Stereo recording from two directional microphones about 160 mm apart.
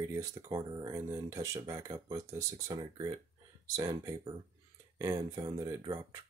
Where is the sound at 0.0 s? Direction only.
20° right (ahead or behind).